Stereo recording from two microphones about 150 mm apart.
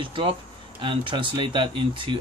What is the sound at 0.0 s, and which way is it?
A man's voice, 35° right (ahead or behind).